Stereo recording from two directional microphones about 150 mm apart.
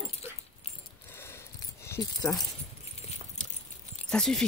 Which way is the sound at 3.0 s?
45° left (ahead or behind).